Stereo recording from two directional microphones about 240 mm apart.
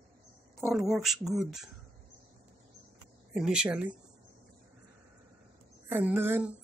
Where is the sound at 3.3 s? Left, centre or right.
Centre.